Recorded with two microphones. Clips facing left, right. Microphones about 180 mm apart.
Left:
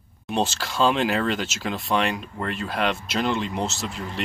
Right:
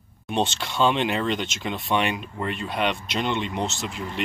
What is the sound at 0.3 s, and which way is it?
Speech, centre (ahead or behind).